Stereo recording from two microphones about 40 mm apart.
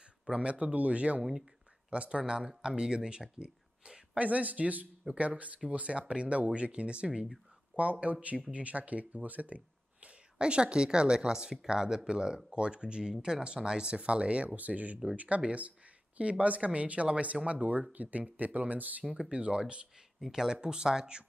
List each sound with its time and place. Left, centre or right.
0.3 s speech: right
2.0 s speech: centre
4.2 s speech: right
10.0 s speech: right
19.0 s speech: right
20.2 s speech: centre